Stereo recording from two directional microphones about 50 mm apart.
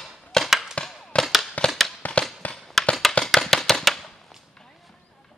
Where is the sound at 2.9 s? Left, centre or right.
Centre.